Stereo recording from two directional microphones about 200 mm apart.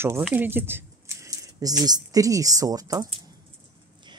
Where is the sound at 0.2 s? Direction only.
10° right (ahead or behind).